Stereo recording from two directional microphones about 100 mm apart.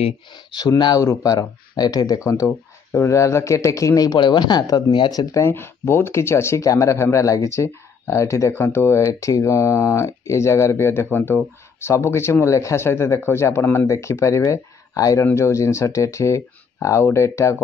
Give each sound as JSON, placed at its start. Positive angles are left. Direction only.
{"t": 0.3, "sound": "speech", "side_deg": 45}
{"t": 5.5, "sound": "speech", "side_deg": 25}